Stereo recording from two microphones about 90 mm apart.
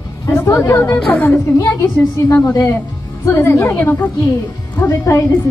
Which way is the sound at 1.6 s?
35° left (ahead or behind).